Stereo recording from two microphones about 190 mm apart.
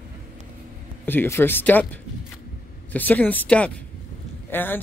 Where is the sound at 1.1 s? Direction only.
10° left (ahead or behind).